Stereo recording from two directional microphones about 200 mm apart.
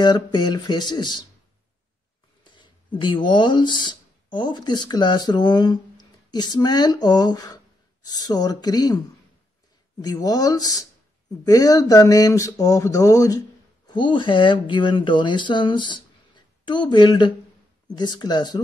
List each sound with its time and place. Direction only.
0.0 s speech: 20° left (ahead or behind)
2.4 s speech: 25° left (ahead or behind)
10.0 s speech: 20° left (ahead or behind)